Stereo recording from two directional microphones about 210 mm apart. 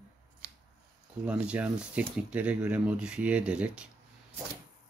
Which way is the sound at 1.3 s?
5° right (ahead or behind).